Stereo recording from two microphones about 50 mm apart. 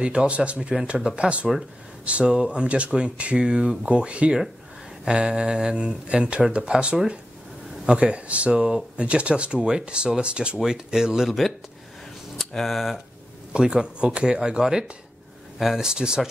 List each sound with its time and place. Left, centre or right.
0.0 s speech: centre
13.5 s speech: centre